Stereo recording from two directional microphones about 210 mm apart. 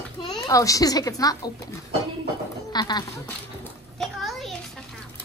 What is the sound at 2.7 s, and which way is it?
Speech, 20° left (ahead or behind).